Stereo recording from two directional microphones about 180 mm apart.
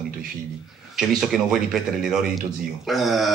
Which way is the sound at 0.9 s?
Centre (ahead or behind).